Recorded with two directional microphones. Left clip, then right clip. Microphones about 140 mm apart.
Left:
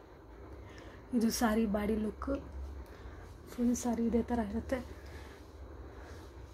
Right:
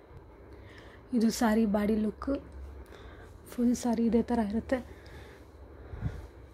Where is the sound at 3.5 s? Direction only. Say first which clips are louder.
Right 4 dB; 50° right (ahead or behind).